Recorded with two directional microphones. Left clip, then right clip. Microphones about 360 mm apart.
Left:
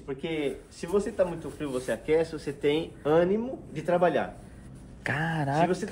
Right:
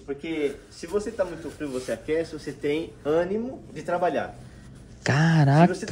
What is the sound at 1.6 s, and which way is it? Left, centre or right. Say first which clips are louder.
Speech: right 1 dB; centre.